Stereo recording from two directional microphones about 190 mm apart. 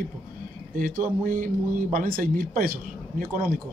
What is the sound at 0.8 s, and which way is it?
Speech, 45° right (ahead or behind).